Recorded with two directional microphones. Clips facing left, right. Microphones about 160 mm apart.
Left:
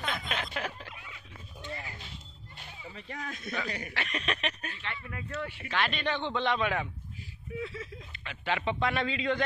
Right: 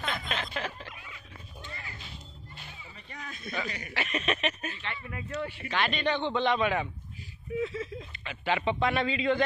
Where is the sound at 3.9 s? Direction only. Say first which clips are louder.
Right 3 dB; 5° right (ahead or behind).